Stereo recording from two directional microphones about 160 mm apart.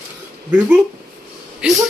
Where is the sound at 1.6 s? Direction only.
5° right (ahead or behind).